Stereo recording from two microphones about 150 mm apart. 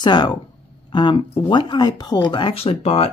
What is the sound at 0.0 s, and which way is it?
Speech, 30° left (ahead or behind).